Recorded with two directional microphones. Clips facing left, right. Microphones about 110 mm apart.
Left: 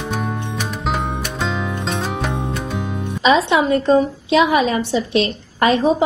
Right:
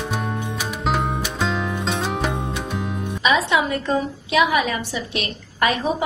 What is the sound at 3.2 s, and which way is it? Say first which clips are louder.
A woman's voice: left 5 dB; 30° left (ahead or behind).